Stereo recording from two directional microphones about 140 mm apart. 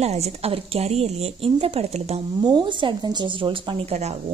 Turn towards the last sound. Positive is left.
turn(degrees=-50)  # may be behind; listen again after turning